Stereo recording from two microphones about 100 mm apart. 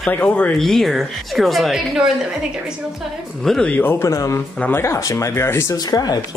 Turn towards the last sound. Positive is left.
turn(degrees=40)  # may be behind; listen again after turning